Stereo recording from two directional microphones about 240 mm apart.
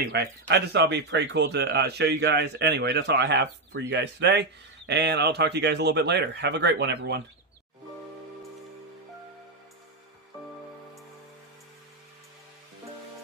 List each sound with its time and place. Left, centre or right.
0.0 s speech: right